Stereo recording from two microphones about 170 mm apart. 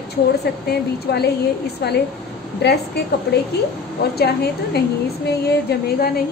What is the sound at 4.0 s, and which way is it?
A woman's voice, 70° left (ahead or behind).